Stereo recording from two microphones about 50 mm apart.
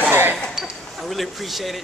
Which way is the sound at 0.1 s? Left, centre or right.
Right.